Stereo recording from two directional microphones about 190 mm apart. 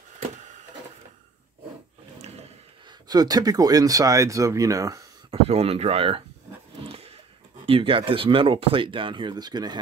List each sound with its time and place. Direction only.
2.9 s speech: 20° right (ahead or behind)
5.3 s speech: 30° right (ahead or behind)
6.8 s a sound: 30° right (ahead or behind)
7.6 s speech: 30° right (ahead or behind)